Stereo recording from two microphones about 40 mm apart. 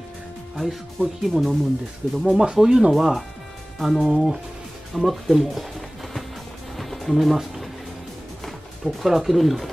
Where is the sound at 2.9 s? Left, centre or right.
Centre.